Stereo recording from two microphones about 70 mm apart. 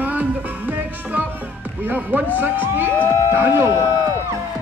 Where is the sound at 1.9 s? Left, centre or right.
Right.